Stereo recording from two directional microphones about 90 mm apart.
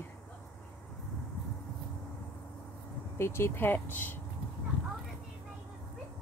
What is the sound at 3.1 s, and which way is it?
Speech, 30° left (ahead or behind).